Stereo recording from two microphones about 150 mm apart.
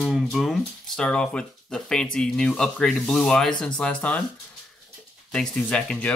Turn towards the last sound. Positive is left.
turn(degrees=10)  # may be behind; listen again after turning